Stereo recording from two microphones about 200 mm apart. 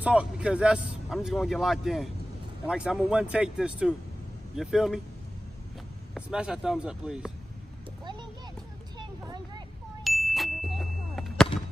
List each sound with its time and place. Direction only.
0.0 s speech: 5° right (ahead or behind)
6.1 s speech: 5° right (ahead or behind)
8.0 s a sound: 20° right (ahead or behind)
10.0 s ding: centre (ahead or behind)